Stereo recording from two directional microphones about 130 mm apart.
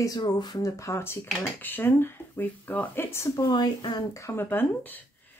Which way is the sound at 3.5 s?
35° left (ahead or behind).